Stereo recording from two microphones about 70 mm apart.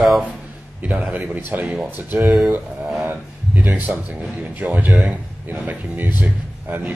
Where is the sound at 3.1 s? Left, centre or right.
Right.